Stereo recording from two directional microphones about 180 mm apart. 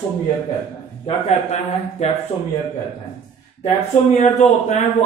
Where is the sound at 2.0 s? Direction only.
40° left (ahead or behind).